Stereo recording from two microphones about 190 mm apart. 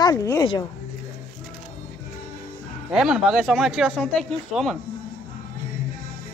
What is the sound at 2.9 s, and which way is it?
A man's voice, 5° right (ahead or behind).